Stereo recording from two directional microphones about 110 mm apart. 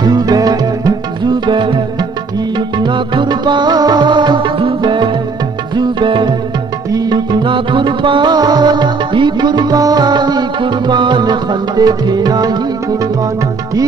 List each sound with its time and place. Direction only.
0.0 s music: 35° right (ahead or behind)